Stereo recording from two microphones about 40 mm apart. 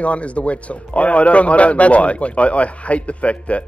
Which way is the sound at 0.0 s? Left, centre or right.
Left.